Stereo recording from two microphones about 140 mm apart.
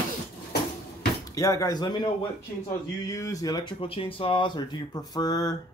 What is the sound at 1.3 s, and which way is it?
Speech, 25° left (ahead or behind).